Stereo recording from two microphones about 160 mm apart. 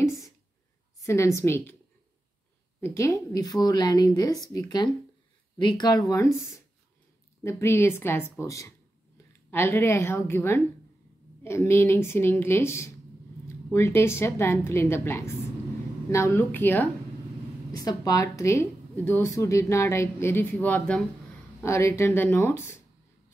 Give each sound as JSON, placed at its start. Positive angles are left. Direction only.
{"t": 1.0, "sound": "speech", "side_deg": 20}
{"t": 2.8, "sound": "a woman's voice", "side_deg": 20}
{"t": 17.6, "sound": "speech", "side_deg": 20}